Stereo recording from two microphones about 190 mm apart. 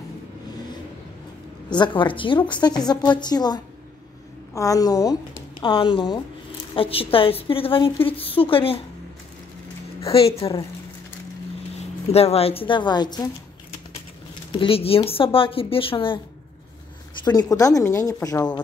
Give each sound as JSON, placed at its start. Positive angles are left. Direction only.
{"t": 1.7, "sound": "a woman's voice", "side_deg": 25}
{"t": 10.1, "sound": "a woman's voice", "side_deg": 30}
{"t": 11.8, "sound": "a woman's voice", "side_deg": 35}
{"t": 14.5, "sound": "a woman's voice", "side_deg": 30}
{"t": 17.2, "sound": "a woman's voice", "side_deg": 20}